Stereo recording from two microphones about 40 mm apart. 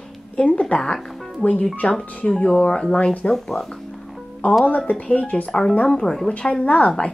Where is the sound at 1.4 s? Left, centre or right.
Centre.